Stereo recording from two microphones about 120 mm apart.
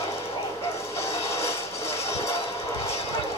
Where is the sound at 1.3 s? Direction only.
20° left (ahead or behind).